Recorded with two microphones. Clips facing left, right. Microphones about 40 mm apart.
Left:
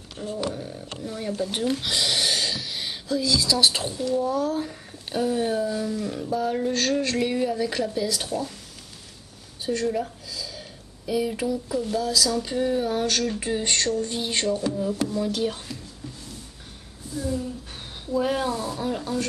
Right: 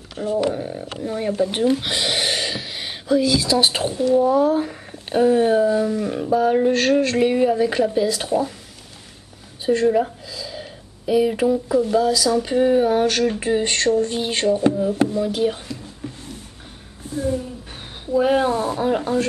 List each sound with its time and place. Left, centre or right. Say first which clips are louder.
0.2 s speech: right 9 dB; centre
0.6 s speech: right 7 dB; right
0.8 s speech: right 6 dB; centre
9.7 s a sound: right 8 dB; right
11.7 s speech: right 6 dB; right
16.0 s a sound: right 7 dB; right
17.1 s speech: right 6 dB; right
18.0 s speech: right 7 dB; right